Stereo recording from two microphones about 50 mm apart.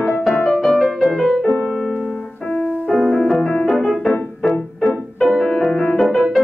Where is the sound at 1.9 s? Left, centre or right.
Left.